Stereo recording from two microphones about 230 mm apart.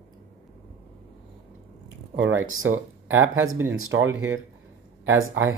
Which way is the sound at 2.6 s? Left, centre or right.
Right.